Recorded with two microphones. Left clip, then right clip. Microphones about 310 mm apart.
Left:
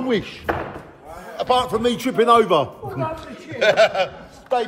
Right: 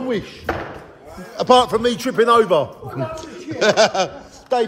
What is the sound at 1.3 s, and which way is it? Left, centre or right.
Speech, right.